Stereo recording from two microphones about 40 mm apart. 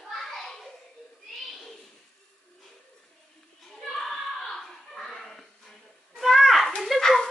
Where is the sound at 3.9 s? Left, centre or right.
Centre.